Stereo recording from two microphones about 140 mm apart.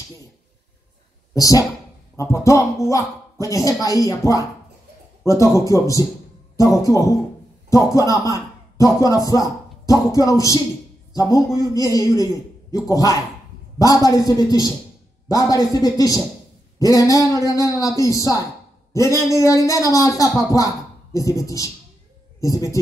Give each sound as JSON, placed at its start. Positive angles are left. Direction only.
{"t": 1.3, "sound": "speech", "side_deg": 25}